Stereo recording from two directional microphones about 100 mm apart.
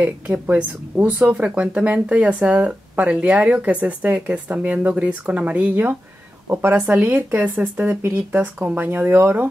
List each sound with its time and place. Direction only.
0.0 s speech: 15° right (ahead or behind)